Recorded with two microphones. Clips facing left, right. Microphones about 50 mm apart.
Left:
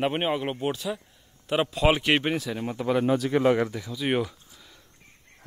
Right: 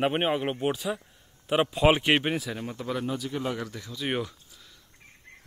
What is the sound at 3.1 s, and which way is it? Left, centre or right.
Speech, left.